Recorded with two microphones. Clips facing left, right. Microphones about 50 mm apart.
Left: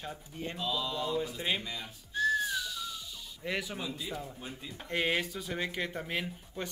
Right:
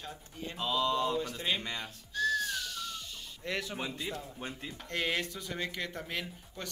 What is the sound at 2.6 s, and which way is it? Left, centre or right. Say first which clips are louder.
Music: left 1 dB; right.